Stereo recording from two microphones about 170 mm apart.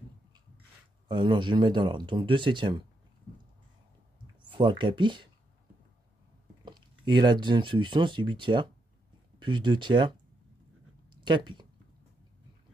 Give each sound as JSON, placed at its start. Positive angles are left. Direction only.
{"t": 1.0, "sound": "speech", "side_deg": -25}
{"t": 4.5, "sound": "speech", "side_deg": -30}
{"t": 6.6, "sound": "speech", "side_deg": -25}